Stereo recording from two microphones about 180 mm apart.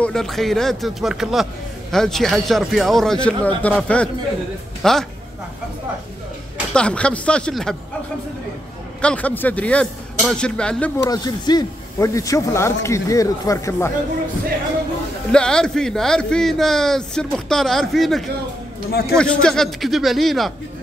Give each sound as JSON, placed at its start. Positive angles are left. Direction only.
{"t": 0.0, "sound": "a man's voice", "side_deg": 0}
{"t": 6.7, "sound": "a man's voice", "side_deg": 5}
{"t": 9.0, "sound": "a man's voice", "side_deg": 10}
{"t": 11.1, "sound": "speech", "side_deg": 20}
{"t": 15.3, "sound": "a man's voice", "side_deg": 5}
{"t": 18.9, "sound": "a man's voice", "side_deg": 60}
{"t": 19.1, "sound": "a man's voice", "side_deg": 5}